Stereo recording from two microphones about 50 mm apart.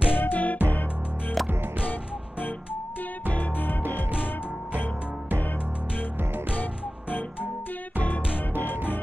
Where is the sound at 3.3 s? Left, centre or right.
Left.